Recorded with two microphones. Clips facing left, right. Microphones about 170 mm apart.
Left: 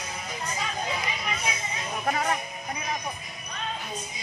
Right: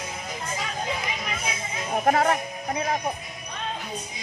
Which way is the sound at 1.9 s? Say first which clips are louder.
Right 7 dB; 50° right (ahead or behind).